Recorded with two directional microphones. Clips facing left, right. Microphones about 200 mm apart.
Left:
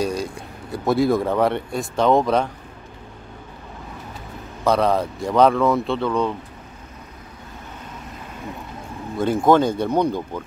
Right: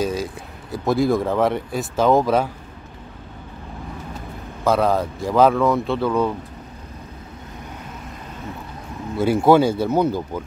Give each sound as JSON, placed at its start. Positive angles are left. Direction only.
{"t": 0.0, "sound": "speech", "side_deg": 0}
{"t": 4.6, "sound": "speech", "side_deg": 0}
{"t": 9.1, "sound": "speech", "side_deg": -10}